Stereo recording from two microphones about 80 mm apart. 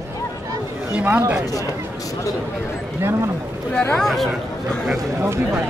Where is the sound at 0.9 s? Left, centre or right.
Right.